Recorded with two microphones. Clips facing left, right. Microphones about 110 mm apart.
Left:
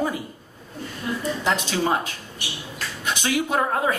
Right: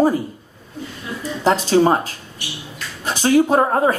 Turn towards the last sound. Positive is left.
turn(degrees=-35)  # may be behind; listen again after turning